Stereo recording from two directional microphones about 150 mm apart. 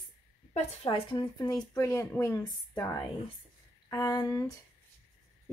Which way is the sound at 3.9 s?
25° left (ahead or behind).